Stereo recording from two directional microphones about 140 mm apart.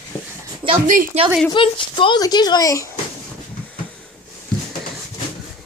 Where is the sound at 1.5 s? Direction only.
35° left (ahead or behind).